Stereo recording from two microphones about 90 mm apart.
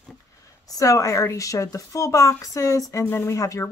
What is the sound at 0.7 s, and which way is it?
Speech, 40° left (ahead or behind).